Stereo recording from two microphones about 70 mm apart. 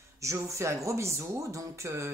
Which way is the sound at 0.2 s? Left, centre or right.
Right.